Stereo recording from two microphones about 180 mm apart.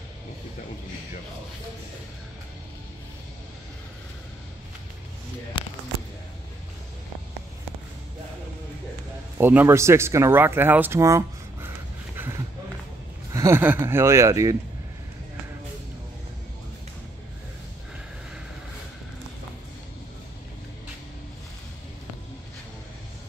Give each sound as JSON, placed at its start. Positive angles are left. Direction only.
{"t": 9.4, "sound": "speech", "side_deg": -10}
{"t": 12.2, "sound": "a sound", "side_deg": -15}
{"t": 13.3, "sound": "speech", "side_deg": -15}